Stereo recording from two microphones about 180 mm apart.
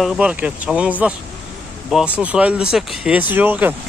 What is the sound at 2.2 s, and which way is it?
Speech, 5° right (ahead or behind).